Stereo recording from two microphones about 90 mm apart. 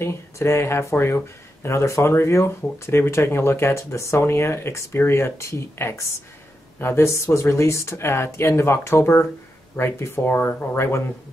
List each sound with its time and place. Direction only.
0.0 s speech: 30° left (ahead or behind)